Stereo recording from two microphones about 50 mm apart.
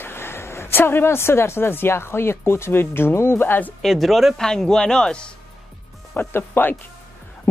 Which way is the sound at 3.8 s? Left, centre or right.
Centre.